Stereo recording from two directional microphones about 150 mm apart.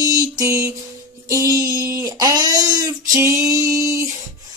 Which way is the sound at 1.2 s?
20° right (ahead or behind).